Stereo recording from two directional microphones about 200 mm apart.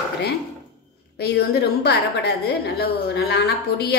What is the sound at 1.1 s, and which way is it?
A woman's voice, 55° left (ahead or behind).